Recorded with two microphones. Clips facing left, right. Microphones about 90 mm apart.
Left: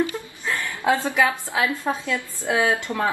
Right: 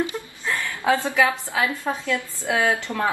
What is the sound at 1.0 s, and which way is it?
Speech, 20° right (ahead or behind).